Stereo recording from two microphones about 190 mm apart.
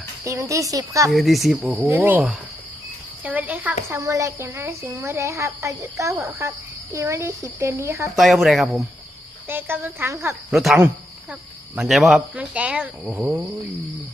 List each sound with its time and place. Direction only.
0.2 s speech: 15° right (ahead or behind)
1.1 s speech: centre (ahead or behind)
8.2 s speech: centre (ahead or behind)
9.5 s speech: 10° right (ahead or behind)
10.5 s speech: centre (ahead or behind)